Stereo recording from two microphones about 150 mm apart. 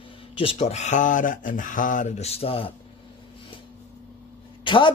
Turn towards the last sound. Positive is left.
turn(degrees=35)  # may be behind; listen again after turning